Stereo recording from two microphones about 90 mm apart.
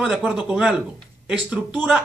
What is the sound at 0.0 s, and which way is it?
Speech, 5° right (ahead or behind).